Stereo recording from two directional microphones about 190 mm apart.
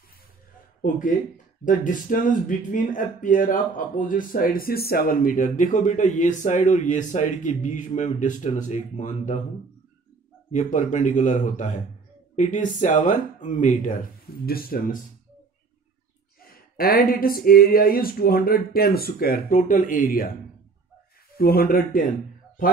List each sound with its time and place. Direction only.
0.8 s speech: 45° left (ahead or behind)
10.5 s speech: 40° left (ahead or behind)
16.4 s speech: 50° left (ahead or behind)
21.4 s speech: 50° left (ahead or behind)